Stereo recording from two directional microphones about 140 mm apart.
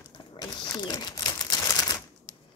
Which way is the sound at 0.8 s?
30° left (ahead or behind).